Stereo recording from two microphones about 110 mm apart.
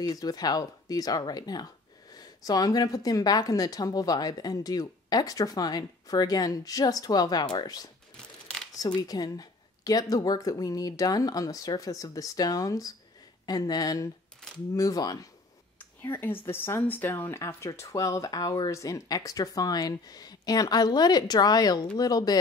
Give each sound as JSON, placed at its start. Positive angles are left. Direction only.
{"t": 0.0, "sound": "speech", "side_deg": 35}
{"t": 8.2, "sound": "camera", "side_deg": 5}
{"t": 8.7, "sound": "speech", "side_deg": 35}
{"t": 15.8, "sound": "speech", "side_deg": 20}